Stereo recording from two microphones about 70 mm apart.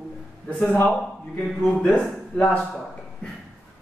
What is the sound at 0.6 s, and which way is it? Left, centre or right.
Speech, left.